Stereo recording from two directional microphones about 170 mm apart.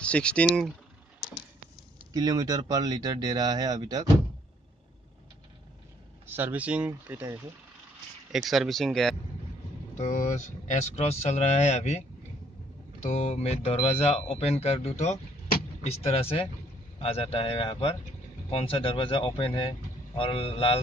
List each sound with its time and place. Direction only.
0.0 s speech: 5° left (ahead or behind)
2.1 s speech: 20° right (ahead or behind)
6.2 s speech: 10° right (ahead or behind)
8.3 s speech: centre (ahead or behind)
9.9 s speech: 45° left (ahead or behind)
13.0 s speech: 40° left (ahead or behind)